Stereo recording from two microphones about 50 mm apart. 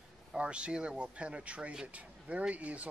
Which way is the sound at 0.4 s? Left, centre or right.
Right.